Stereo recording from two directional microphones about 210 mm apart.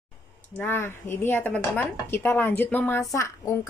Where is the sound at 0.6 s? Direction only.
10° left (ahead or behind).